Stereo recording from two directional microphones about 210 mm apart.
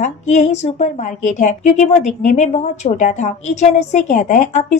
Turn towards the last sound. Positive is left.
turn(degrees=35)  # may be behind; listen again after turning